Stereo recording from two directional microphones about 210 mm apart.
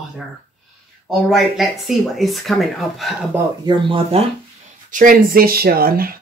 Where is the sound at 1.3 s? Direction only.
Centre (ahead or behind).